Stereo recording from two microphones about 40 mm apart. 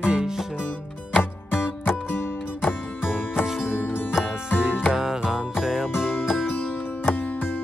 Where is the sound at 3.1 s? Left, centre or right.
Centre.